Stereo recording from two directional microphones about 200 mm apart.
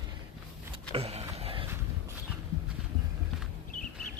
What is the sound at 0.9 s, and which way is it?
Vehicle, 30° right (ahead or behind).